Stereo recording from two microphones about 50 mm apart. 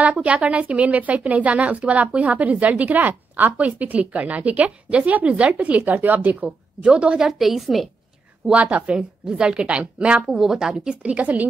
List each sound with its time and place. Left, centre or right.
0.0 s a woman's voice: right
6.4 s speech: centre
7.2 s a woman's voice: centre
8.5 s a woman's voice: right
10.3 s a woman's voice: centre
11.0 s a woman's voice: right